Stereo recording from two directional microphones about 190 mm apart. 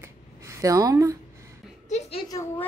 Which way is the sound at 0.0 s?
15° right (ahead or behind).